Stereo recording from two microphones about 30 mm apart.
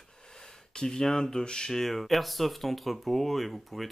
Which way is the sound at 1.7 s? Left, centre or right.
Centre.